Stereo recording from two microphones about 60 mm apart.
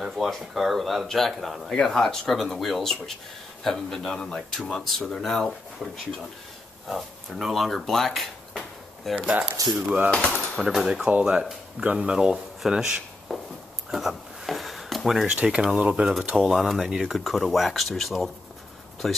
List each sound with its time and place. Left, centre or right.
0.0 s speech: centre
9.8 s cutlery: centre
10.5 s speech: centre
11.1 s speech: centre
13.3 s a sound: centre
15.2 s speech: centre
16.3 s speech: centre